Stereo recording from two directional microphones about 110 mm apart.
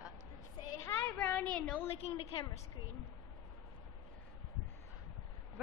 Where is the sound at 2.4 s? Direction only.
35° left (ahead or behind).